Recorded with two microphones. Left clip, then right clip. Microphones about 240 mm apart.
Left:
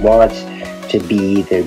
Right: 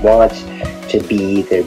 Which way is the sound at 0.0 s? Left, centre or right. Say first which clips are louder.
Even; left.